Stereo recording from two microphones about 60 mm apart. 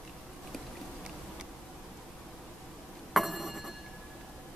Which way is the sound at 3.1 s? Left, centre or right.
Centre.